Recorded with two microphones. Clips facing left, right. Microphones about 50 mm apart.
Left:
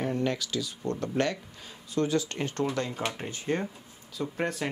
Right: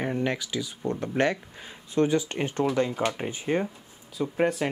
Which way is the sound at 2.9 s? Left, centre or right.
Centre.